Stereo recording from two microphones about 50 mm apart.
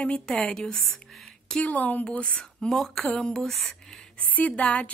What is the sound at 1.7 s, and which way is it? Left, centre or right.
A woman's voice, left.